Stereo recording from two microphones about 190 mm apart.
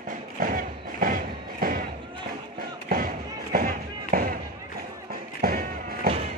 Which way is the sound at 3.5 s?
50° right (ahead or behind).